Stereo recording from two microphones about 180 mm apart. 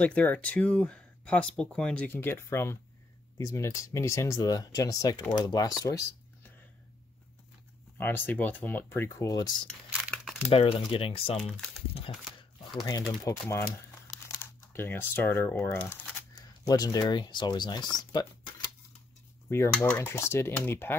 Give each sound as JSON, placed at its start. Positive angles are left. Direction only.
{"t": 0.0, "sound": "speech", "side_deg": 10}
{"t": 8.0, "sound": "speech", "side_deg": 10}
{"t": 9.7, "sound": "crumpling", "side_deg": 0}
{"t": 10.5, "sound": "speech", "side_deg": 30}
{"t": 13.2, "sound": "speech", "side_deg": 15}
{"t": 19.5, "sound": "speech", "side_deg": 15}